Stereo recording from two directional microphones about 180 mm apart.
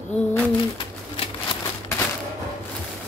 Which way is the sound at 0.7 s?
30° left (ahead or behind).